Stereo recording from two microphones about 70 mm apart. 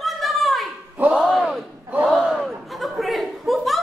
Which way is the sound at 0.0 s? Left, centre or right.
Centre.